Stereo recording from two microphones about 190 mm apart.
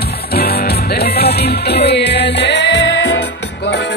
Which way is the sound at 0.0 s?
55° left (ahead or behind).